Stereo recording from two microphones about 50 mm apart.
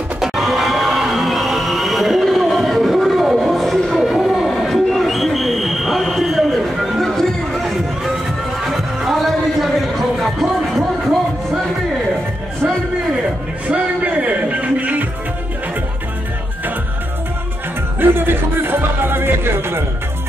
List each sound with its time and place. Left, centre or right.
0.2 s music: centre
13.7 s music: right
17.9 s music: right